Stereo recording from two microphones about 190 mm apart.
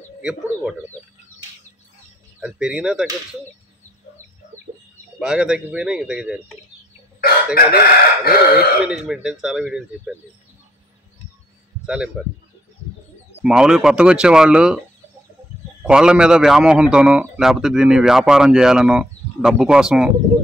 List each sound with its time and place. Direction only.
0.2 s a man's voice: 5° right (ahead or behind)
2.4 s a man's voice: 5° right (ahead or behind)
5.2 s a man's voice: 5° right (ahead or behind)
7.5 s chicken: 55° left (ahead or behind)
8.8 s a man's voice: 5° right (ahead or behind)
11.8 s speech: 5° right (ahead or behind)
13.4 s a man's voice: 5° right (ahead or behind)
15.8 s a man's voice: 5° right (ahead or behind)